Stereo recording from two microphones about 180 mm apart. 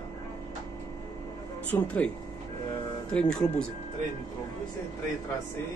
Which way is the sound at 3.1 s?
5° left (ahead or behind).